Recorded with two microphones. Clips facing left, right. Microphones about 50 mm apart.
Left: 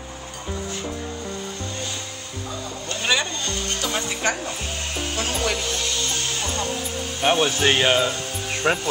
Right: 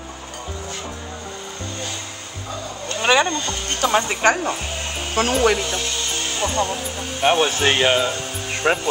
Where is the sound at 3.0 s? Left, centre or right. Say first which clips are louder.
Right 6 dB; right.